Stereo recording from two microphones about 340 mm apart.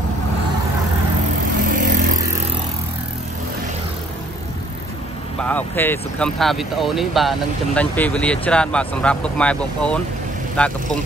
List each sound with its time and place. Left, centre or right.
1.6 s vehicle: right
5.4 s speech: centre